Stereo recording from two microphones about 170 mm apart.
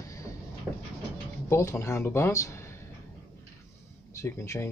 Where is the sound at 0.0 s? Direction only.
20° left (ahead or behind).